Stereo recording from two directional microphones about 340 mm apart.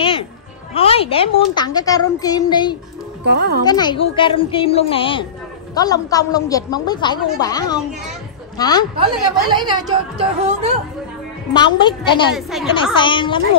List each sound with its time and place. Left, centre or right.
0.0 s music: centre
0.7 s a child's voice: centre
3.3 s a child's voice: right
3.6 s a child's voice: centre
9.5 s a woman's voice: centre
11.5 s a child's voice: centre
12.4 s a woman's voice: centre
12.7 s a child's voice: centre